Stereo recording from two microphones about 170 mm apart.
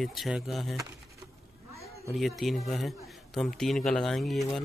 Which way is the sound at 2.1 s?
Centre (ahead or behind).